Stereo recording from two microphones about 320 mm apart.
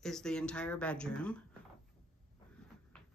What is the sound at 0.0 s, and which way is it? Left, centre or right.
A woman's voice, centre.